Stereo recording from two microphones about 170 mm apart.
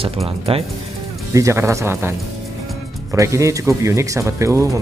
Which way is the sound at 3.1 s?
20° right (ahead or behind).